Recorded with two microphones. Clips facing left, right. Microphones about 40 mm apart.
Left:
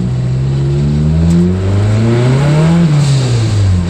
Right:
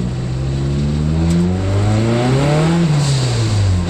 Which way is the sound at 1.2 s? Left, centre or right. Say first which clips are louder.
Left 4 dB; centre.